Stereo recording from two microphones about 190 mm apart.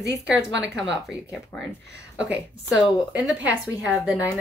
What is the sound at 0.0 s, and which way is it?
Speech, 65° right (ahead or behind).